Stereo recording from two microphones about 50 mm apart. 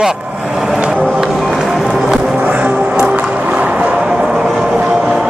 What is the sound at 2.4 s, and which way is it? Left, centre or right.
Music, right.